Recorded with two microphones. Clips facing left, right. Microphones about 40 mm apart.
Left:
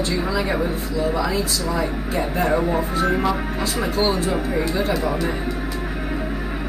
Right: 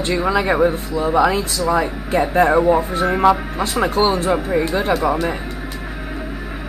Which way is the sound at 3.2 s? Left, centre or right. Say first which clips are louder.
Right 7 dB; right.